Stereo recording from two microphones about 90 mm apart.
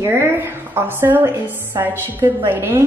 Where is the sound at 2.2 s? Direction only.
35° right (ahead or behind).